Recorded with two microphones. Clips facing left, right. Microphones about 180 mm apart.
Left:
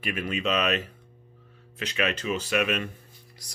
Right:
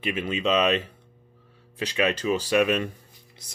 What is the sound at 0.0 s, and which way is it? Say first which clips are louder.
Speech: right 3 dB; 25° right (ahead or behind).